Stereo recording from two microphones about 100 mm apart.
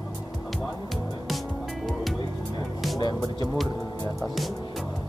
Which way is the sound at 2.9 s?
45° left (ahead or behind).